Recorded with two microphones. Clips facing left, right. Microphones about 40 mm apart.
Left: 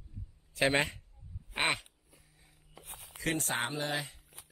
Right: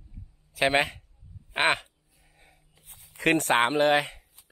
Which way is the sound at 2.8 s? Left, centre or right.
Left.